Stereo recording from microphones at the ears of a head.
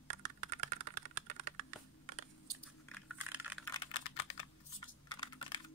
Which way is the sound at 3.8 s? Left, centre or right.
Left.